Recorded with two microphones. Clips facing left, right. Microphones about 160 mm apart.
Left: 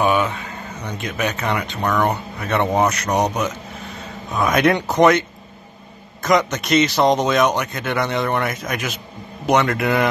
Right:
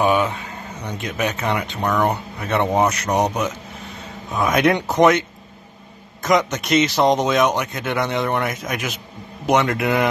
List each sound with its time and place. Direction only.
0.0 s a sound: 25° right (ahead or behind)
1.0 s speech: 20° right (ahead or behind)
4.7 s speech: centre (ahead or behind)
6.2 s speech: 15° right (ahead or behind)